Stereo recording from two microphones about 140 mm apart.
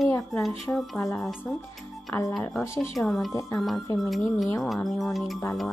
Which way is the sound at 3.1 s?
Centre (ahead or behind).